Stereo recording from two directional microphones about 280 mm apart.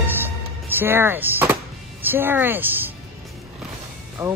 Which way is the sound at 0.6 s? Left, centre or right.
Centre.